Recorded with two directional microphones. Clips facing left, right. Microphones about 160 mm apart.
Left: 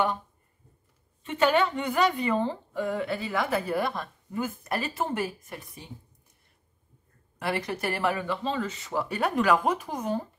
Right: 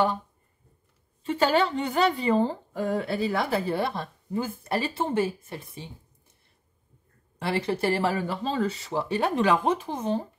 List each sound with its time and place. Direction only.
1.2 s a woman's voice: 35° right (ahead or behind)
7.3 s speech: 30° right (ahead or behind)